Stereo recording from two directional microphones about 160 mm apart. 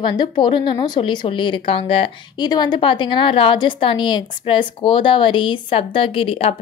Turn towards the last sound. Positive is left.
turn(degrees=35)  # may be behind; listen again after turning